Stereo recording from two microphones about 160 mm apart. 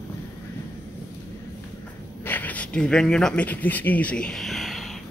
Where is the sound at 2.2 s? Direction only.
10° left (ahead or behind).